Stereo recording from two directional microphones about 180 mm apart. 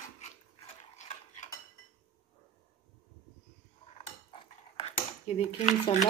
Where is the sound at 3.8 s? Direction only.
30° left (ahead or behind).